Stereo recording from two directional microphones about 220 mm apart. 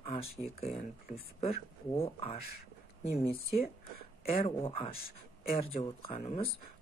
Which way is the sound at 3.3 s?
40° left (ahead or behind).